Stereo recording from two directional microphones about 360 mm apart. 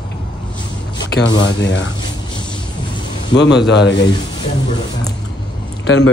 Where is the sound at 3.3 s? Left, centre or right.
Left.